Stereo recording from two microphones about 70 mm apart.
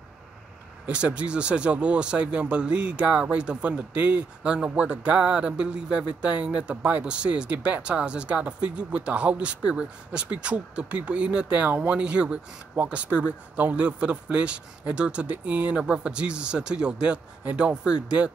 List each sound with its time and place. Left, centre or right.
0.8 s speech: centre